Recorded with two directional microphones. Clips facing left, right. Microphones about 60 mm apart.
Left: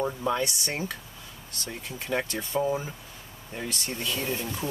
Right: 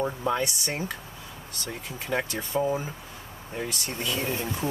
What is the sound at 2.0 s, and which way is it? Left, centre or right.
Speech, centre.